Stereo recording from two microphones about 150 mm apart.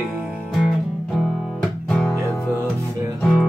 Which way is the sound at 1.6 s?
5° left (ahead or behind).